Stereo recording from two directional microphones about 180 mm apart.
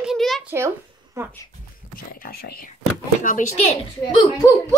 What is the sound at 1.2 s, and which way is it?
Speech, 15° right (ahead or behind).